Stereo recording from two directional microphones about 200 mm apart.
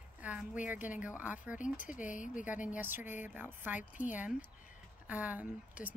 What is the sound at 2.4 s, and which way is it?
Speech, 5° right (ahead or behind).